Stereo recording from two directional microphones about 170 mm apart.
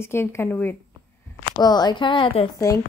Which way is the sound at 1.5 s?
25° left (ahead or behind).